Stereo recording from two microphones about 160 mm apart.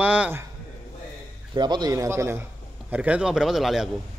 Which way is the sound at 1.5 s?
25° right (ahead or behind).